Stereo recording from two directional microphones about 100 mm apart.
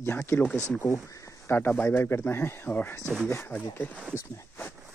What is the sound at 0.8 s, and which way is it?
Speech, 30° left (ahead or behind).